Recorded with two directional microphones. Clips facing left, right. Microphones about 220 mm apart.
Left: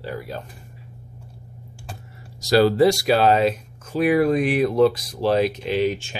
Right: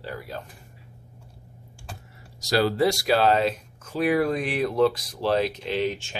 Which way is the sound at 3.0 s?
15° left (ahead or behind).